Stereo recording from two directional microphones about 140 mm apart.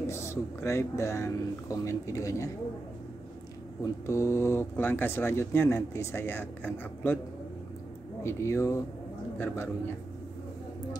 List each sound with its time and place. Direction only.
0.0 s speech: 20° left (ahead or behind)
3.8 s speech: 20° left (ahead or behind)
8.2 s speech: 20° left (ahead or behind)